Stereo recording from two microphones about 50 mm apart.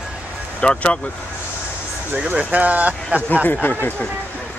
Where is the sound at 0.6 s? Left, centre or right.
Left.